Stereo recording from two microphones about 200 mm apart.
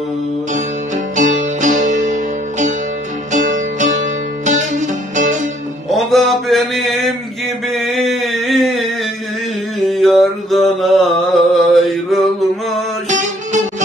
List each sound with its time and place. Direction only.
0.9 s music: 40° right (ahead or behind)
3.3 s music: 40° right (ahead or behind)
5.9 s mantra: centre (ahead or behind)
7.7 s a sound: centre (ahead or behind)
9.8 s mantra: centre (ahead or behind)
13.1 s music: 40° right (ahead or behind)